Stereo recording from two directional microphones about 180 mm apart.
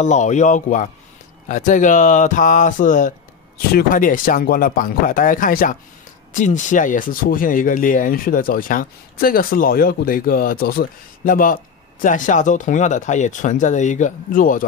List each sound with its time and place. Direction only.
0.0 s speech: 40° left (ahead or behind)